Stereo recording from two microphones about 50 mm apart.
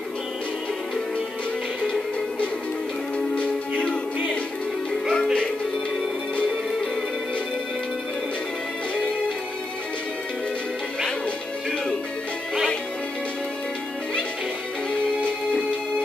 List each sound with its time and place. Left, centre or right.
5.1 s music: centre
14.9 s music: left